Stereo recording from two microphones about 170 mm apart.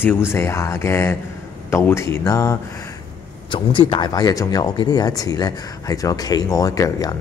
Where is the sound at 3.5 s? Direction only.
30° left (ahead or behind).